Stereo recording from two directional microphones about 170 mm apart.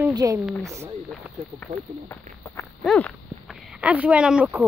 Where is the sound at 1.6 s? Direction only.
10° left (ahead or behind).